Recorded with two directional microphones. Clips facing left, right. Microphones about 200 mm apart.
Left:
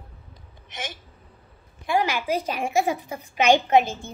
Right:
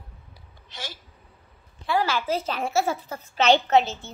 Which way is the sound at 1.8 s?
15° left (ahead or behind).